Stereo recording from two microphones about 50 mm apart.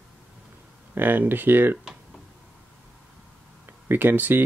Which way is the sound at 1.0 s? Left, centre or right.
Right.